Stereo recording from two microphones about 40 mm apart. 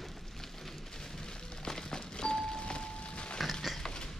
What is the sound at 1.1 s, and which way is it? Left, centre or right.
Music, centre.